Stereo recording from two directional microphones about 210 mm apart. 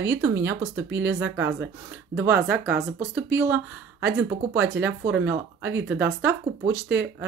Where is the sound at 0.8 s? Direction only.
60° right (ahead or behind).